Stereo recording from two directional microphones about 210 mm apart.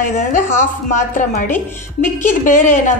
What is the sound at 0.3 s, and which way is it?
A woman's voice, 35° left (ahead or behind).